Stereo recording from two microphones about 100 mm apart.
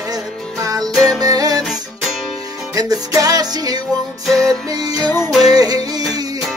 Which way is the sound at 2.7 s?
35° right (ahead or behind).